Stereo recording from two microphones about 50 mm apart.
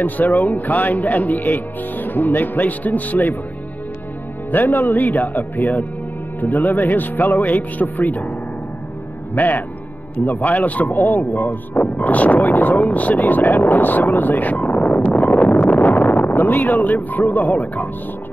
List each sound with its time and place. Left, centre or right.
0.0 s speech: left
4.5 s speech: left
9.3 s speech: left